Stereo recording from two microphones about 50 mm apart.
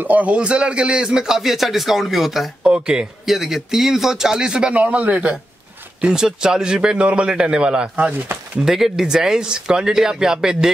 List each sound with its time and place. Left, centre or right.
0.0 s a man's voice: right; by 2.5 s centre
2.6 s speech: centre
3.3 s a man's voice: centre
4.7 s a man's voice: right
5.9 s a man's voice: centre
8.5 s a man's voice: centre